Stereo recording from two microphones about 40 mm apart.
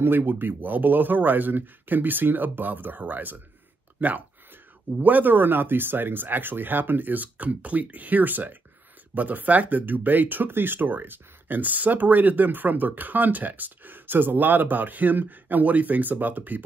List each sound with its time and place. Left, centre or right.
0.0 s speech: right